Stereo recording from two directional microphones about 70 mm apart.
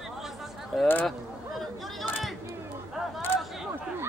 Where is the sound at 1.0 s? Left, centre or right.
Centre.